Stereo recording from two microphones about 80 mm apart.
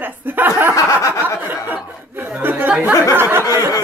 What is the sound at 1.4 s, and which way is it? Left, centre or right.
Speech, right.